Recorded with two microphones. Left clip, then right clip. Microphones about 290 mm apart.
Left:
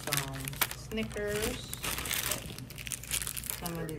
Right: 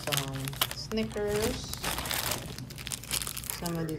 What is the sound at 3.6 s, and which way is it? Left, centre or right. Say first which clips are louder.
Speech: right 5 dB; centre.